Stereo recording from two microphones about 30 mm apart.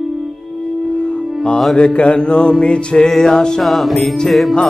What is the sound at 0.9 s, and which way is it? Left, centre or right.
Music, left.